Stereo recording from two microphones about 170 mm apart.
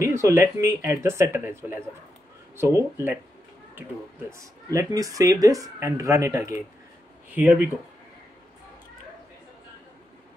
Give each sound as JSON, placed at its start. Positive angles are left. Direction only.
{"t": 0.0, "sound": "speech", "side_deg": -15}
{"t": 4.3, "sound": "speech", "side_deg": -20}